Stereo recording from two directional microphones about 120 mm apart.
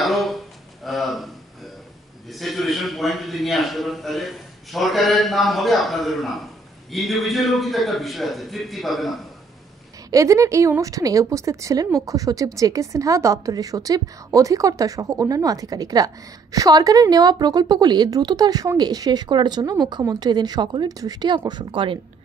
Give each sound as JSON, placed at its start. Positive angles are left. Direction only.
{"t": 0.0, "sound": "speech", "side_deg": 0}
{"t": 0.8, "sound": "a sound", "side_deg": 0}
{"t": 2.3, "sound": "a man's voice", "side_deg": 0}
{"t": 10.1, "sound": "a woman's voice", "side_deg": -25}